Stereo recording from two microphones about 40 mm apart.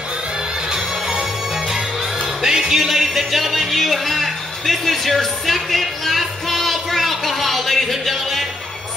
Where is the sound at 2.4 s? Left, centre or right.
Centre.